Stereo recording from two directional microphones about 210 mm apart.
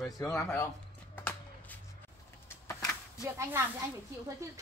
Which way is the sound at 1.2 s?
10° left (ahead or behind).